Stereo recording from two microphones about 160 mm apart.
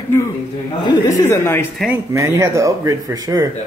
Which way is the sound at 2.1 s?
20° right (ahead or behind).